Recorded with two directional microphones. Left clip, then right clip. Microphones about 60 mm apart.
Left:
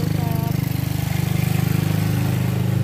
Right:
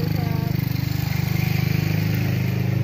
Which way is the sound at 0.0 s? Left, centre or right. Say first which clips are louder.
Left 2 dB; right.